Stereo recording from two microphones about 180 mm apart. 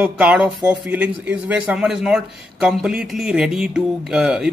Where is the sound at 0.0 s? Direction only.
5° right (ahead or behind).